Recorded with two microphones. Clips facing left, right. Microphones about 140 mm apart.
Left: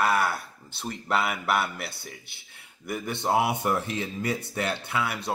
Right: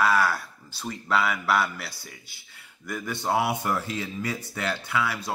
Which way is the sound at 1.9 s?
60° left (ahead or behind).